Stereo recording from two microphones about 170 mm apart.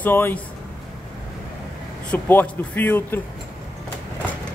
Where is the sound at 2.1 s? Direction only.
10° left (ahead or behind).